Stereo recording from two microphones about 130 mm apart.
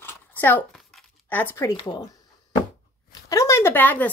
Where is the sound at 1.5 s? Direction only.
25° left (ahead or behind).